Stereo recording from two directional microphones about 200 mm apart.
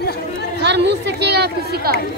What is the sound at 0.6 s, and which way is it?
Speech, 60° right (ahead or behind).